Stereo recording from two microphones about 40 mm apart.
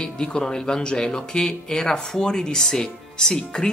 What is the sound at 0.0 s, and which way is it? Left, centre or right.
Speech, left.